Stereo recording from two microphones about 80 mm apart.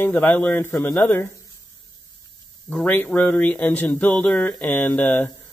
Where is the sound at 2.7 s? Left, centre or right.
Centre.